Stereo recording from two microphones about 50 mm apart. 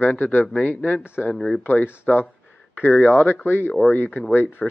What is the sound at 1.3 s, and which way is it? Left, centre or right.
Speech, centre.